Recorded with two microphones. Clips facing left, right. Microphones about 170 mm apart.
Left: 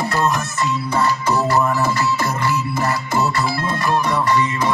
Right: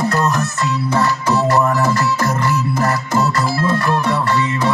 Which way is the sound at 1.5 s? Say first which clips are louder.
Right 2 dB; 65° right (ahead or behind).